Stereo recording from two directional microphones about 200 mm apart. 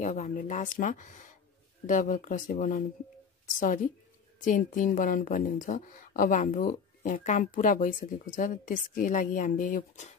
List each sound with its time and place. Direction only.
0.0 s a woman's voice: 35° left (ahead or behind)